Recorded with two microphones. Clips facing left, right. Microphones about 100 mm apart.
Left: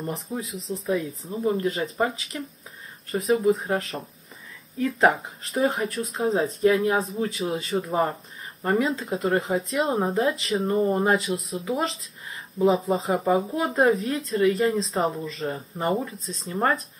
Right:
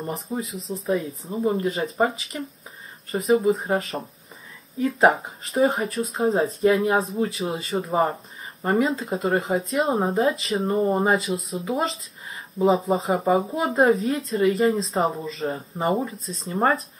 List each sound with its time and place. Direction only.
0.0 s speech: 5° right (ahead or behind)
1.3 s speech: 25° right (ahead or behind)
1.6 s speech: centre (ahead or behind)
3.9 s speech: 30° right (ahead or behind)
4.7 s speech: 10° right (ahead or behind)
5.5 s speech: centre (ahead or behind)